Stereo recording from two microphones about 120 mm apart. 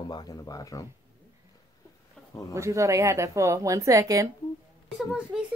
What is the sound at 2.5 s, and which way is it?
Speech, 25° right (ahead or behind).